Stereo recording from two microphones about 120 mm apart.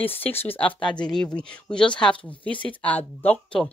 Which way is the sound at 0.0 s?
15° left (ahead or behind).